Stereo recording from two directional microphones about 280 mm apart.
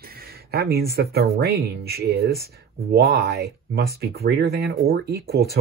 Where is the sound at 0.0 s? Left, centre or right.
Right.